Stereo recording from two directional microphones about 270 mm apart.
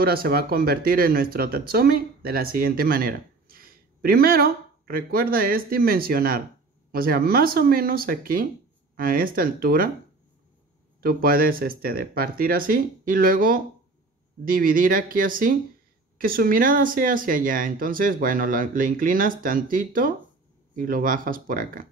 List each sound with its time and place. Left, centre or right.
0.0 s speech: right
11.0 s speech: right